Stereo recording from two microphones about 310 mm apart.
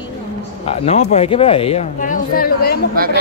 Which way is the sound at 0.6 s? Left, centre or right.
Centre.